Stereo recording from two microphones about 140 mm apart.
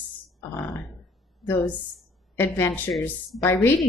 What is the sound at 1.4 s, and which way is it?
A woman's voice, 15° left (ahead or behind).